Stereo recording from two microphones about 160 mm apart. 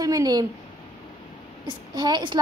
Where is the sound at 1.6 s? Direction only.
25° right (ahead or behind).